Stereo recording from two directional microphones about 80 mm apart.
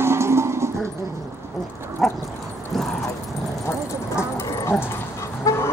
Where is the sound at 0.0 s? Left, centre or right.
Right.